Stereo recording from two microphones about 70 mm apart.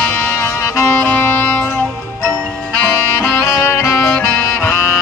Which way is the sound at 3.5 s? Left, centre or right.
Left.